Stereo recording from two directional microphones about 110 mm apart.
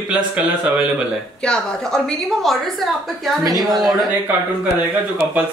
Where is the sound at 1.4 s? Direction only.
5° left (ahead or behind).